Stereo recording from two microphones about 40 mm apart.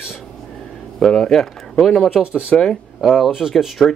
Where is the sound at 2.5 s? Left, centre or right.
Centre.